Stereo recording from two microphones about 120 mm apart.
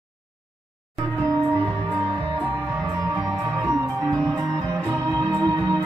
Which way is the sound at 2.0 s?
45° right (ahead or behind).